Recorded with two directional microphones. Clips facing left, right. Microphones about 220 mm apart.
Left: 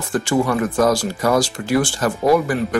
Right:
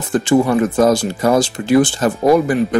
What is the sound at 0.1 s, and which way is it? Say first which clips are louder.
Speech: right 5 dB; 25° right (ahead or behind).